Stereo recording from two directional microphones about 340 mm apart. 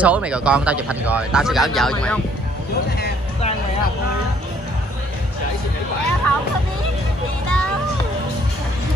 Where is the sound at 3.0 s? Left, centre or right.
Left.